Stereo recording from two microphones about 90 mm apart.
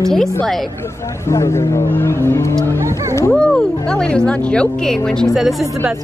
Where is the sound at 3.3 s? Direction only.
10° left (ahead or behind).